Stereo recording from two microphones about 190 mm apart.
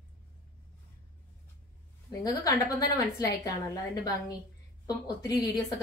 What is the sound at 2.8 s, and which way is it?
A woman's voice, 15° left (ahead or behind).